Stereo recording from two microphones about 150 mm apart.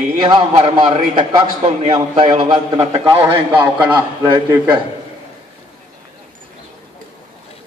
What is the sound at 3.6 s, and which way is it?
A man's voice, 30° right (ahead or behind).